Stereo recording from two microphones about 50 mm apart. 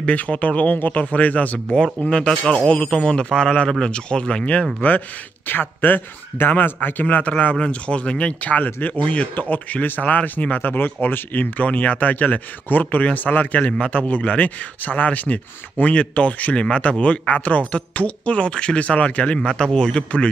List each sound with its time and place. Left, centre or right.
0.0 s speech: left
2.1 s a man's voice: centre
5.5 s speech: left
10.8 s speech: left